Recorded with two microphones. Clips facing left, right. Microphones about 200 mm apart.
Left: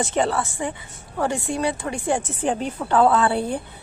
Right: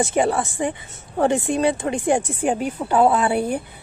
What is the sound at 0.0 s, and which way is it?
A woman's voice, 10° right (ahead or behind).